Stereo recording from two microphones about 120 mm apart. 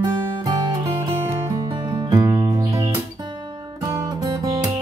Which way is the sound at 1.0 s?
25° right (ahead or behind).